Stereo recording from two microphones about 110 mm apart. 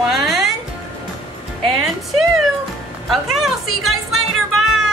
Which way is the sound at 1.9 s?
Centre (ahead or behind).